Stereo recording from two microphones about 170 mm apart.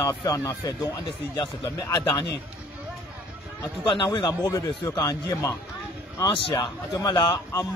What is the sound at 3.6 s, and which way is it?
A man's voice, 25° left (ahead or behind).